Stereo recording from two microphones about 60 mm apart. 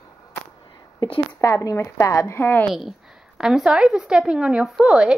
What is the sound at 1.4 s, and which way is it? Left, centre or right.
Speech, left.